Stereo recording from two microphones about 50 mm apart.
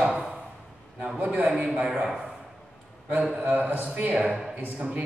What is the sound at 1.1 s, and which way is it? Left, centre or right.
Speech, right.